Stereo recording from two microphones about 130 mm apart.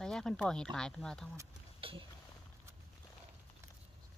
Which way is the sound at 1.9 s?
45° right (ahead or behind).